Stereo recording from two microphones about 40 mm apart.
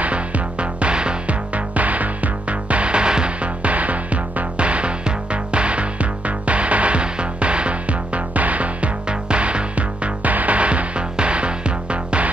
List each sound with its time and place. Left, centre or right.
0.0 s music: right
1.5 s music: right
3.6 s music: right